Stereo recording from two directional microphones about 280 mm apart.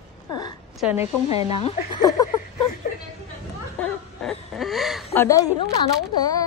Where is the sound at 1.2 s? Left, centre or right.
Left.